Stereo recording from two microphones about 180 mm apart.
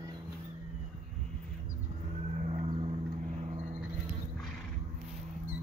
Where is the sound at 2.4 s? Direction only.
35° right (ahead or behind).